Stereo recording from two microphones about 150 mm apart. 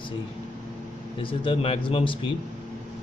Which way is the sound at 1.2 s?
35° left (ahead or behind).